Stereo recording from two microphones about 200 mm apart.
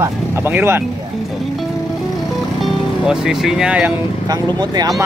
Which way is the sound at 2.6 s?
Centre (ahead or behind).